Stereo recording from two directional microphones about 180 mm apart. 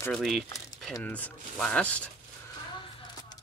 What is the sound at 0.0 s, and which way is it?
Speech, 5° left (ahead or behind).